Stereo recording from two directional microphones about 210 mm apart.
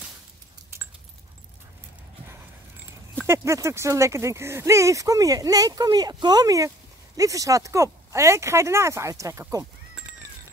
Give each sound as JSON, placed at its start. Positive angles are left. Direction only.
{"t": 3.3, "sound": "speech", "side_deg": -15}